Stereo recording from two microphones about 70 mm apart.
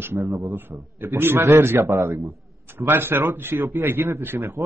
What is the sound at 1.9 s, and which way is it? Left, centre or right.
Speech, right.